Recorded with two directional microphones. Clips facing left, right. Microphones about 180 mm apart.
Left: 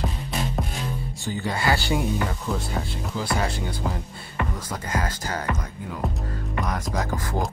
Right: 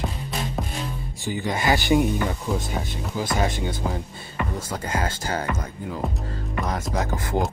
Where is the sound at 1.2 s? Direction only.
15° right (ahead or behind).